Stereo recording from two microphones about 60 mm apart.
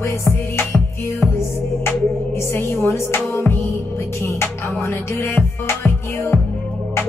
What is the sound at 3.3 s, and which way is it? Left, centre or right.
Music, left.